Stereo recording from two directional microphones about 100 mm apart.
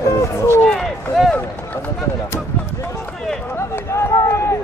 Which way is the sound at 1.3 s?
15° left (ahead or behind).